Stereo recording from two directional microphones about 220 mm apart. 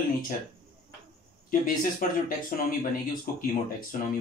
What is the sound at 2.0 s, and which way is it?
Speech, 40° left (ahead or behind).